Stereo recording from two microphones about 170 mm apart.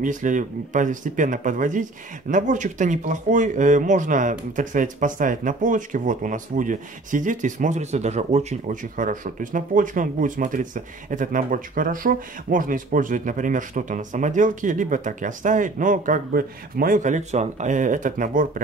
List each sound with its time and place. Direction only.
0.0 s speech: 50° right (ahead or behind)